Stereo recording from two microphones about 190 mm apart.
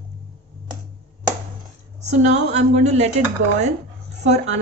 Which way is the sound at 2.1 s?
35° right (ahead or behind).